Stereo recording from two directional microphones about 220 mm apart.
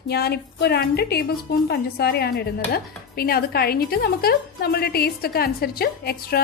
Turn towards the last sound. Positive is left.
turn(degrees=45)  # may be behind; listen again after turning